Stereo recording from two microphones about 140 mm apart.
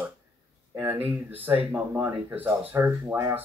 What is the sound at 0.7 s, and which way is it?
Speech, 15° right (ahead or behind).